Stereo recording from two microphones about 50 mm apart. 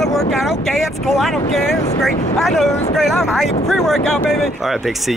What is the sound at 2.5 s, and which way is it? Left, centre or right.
Speech, centre.